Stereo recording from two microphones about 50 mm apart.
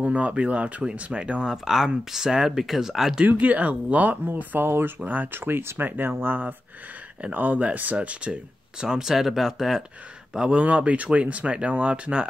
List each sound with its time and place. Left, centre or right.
0.0 s speech: right
1.6 s speech: centre
3.3 s speech: right
4.6 s speech: right
5.0 s speech: right
8.8 s speech: centre
10.3 s speech: centre